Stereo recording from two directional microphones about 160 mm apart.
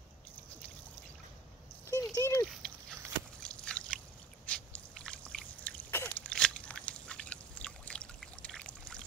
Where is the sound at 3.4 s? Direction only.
5° left (ahead or behind).